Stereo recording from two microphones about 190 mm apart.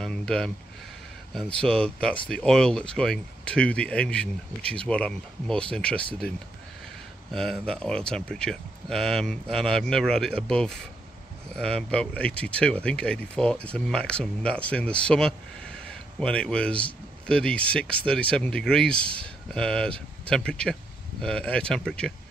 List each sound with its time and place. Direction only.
0.0 s a sound: 5° left (ahead or behind)
1.3 s speech: 5° left (ahead or behind)
7.2 s speech: centre (ahead or behind)